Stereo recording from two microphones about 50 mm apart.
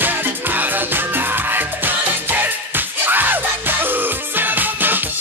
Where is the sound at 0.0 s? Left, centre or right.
Right.